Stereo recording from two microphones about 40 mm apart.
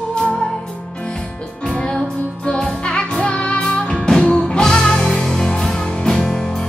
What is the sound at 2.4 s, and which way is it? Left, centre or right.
Music, left.